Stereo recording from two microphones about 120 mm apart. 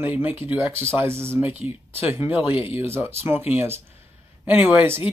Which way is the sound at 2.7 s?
20° right (ahead or behind).